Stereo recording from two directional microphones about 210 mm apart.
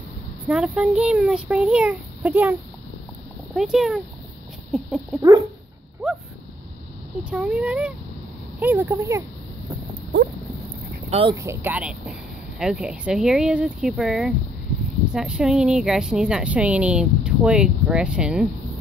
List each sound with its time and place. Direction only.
0.5 s a woman's voice: 5° right (ahead or behind)
3.5 s a woman's voice: centre (ahead or behind)
6.0 s a sound: centre (ahead or behind)
7.2 s a woman's voice: 5° right (ahead or behind)
11.1 s speech: 25° right (ahead or behind)
11.3 s a woman's voice: 10° right (ahead or behind)